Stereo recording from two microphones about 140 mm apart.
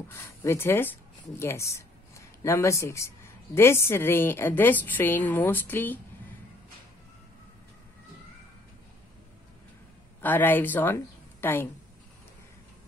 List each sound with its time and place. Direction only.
0.1 s a woman's voice: 20° left (ahead or behind)
10.2 s a woman's voice: 15° left (ahead or behind)